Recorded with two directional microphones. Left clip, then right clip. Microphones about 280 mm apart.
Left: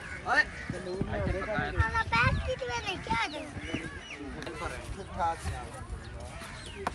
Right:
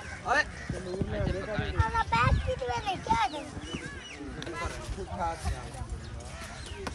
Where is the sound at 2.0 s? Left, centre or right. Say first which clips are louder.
Even; right.